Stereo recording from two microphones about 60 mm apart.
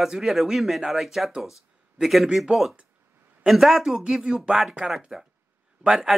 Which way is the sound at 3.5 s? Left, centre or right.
Centre.